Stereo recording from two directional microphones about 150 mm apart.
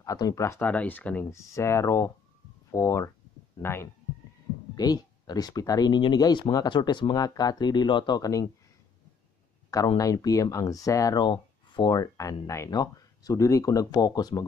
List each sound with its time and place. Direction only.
0.0 s speech: 25° left (ahead or behind)
9.9 s speech: 25° left (ahead or behind)